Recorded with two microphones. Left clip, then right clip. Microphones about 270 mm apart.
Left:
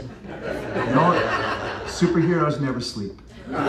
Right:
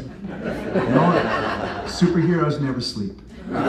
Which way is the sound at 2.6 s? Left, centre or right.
Centre.